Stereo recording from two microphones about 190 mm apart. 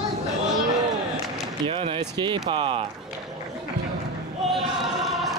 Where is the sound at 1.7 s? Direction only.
30° right (ahead or behind).